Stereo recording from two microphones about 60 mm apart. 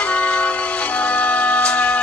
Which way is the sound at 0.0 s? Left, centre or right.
Left.